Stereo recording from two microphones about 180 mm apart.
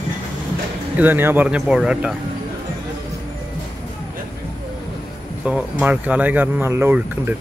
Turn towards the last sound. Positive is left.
turn(degrees=-10)  # may be behind; listen again after turning